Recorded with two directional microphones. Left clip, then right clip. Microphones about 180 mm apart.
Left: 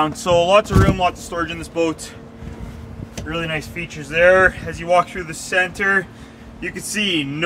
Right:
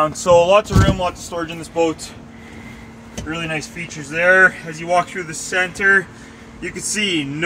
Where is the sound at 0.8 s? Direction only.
15° right (ahead or behind).